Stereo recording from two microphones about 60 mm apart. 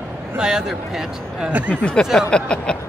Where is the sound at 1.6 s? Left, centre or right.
Centre.